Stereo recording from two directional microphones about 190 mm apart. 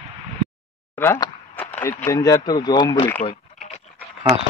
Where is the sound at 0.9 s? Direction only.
15° left (ahead or behind).